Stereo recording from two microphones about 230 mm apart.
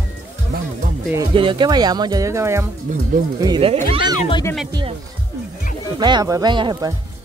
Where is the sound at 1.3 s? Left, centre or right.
Right.